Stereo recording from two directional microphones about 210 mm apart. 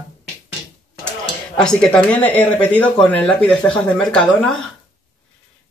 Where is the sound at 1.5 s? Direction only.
5° left (ahead or behind).